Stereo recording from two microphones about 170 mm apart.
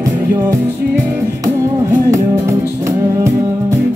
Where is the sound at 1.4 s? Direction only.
15° right (ahead or behind).